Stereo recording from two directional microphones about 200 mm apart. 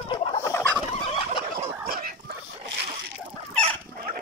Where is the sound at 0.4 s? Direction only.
15° left (ahead or behind).